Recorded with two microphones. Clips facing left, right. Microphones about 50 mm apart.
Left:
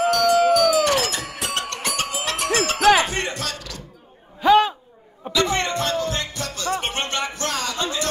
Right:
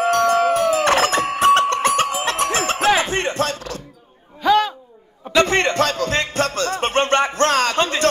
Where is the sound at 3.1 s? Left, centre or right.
Right.